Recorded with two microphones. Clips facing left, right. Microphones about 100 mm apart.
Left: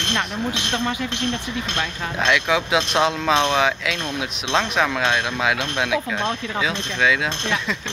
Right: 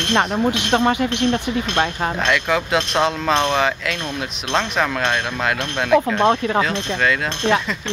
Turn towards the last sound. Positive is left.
turn(degrees=0)  # may be behind; listen again after turning